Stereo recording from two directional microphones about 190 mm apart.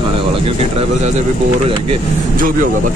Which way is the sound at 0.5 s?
35° right (ahead or behind).